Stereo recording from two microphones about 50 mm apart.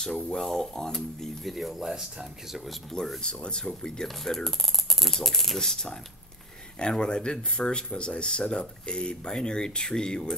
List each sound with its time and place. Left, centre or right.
0.0 s speech: centre
2.9 s speech: centre